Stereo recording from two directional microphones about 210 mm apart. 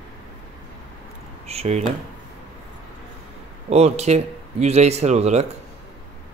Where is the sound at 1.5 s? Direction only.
30° right (ahead or behind).